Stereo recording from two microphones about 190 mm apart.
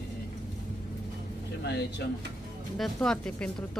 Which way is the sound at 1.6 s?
60° left (ahead or behind).